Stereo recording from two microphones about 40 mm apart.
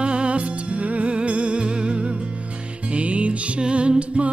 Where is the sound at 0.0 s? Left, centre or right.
Right.